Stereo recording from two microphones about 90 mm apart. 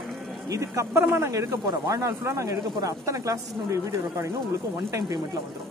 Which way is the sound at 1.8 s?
40° right (ahead or behind).